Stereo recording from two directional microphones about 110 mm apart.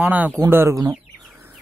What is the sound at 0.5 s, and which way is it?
Speech, 25° right (ahead or behind).